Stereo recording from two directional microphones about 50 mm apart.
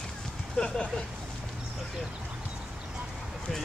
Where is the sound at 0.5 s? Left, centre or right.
Centre.